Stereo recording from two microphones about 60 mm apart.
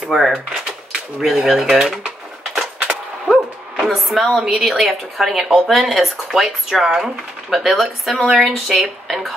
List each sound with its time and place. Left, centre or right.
0.1 s speech: centre
2.9 s a sound: centre
3.8 s speech: centre